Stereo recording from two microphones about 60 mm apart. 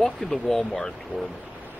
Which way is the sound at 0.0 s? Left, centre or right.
Centre.